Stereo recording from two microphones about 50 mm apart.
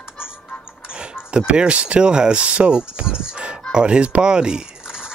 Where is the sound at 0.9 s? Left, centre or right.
Centre.